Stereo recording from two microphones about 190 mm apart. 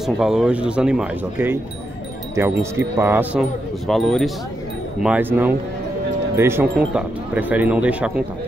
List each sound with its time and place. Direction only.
0.0 s speech: centre (ahead or behind)
2.6 s speech: 15° right (ahead or behind)
3.8 s speech: centre (ahead or behind)
5.0 s speech: 10° right (ahead or behind)